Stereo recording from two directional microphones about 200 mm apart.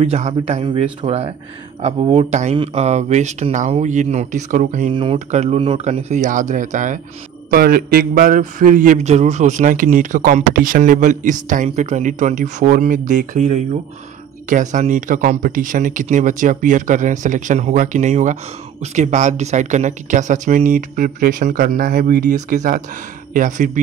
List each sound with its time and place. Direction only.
0.0 s speech: 30° right (ahead or behind)